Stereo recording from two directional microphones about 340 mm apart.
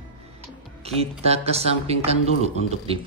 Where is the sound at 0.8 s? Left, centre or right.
Centre.